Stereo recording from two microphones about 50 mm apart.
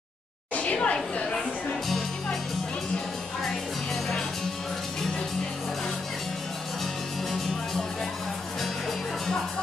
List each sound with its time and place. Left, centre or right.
0.6 s a woman's voice: left
1.1 s music: centre